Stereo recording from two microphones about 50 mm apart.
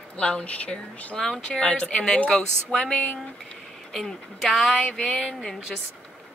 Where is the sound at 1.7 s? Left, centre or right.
Left.